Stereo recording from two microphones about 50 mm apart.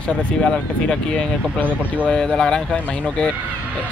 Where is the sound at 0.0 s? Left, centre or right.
Left.